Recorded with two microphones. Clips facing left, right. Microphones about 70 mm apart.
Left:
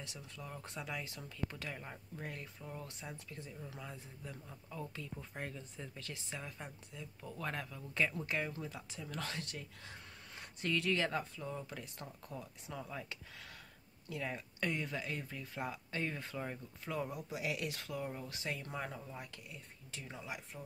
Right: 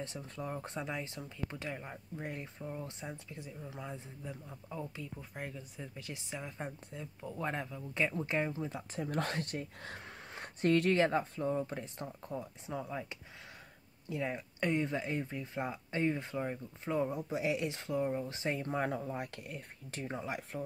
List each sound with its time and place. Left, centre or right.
0.0 s speech: right; by 6.5 s centre
6.6 s speech: right
7.2 s speech: right
8.9 s speech: right
9.9 s a sound: right
10.6 s speech: right
11.0 s speech: right
18.9 s speech: right